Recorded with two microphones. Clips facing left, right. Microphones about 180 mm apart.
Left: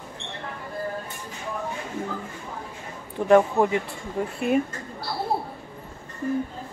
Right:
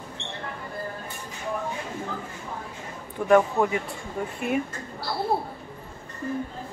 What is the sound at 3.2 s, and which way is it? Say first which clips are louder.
A woman's voice: left 2 dB; 25° left (ahead or behind).